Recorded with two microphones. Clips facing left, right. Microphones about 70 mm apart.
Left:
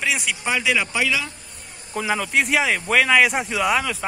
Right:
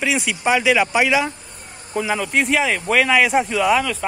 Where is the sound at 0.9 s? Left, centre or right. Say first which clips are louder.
Right 6 dB; right.